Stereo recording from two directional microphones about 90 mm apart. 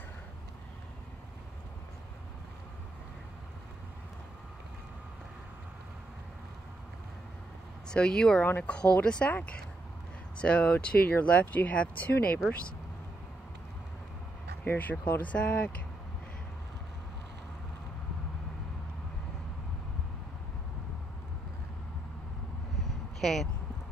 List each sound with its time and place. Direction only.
7.9 s speech: 10° left (ahead or behind)
8.5 s speech: 15° left (ahead or behind)
14.6 s speech: 20° left (ahead or behind)
23.2 s speech: 5° left (ahead or behind)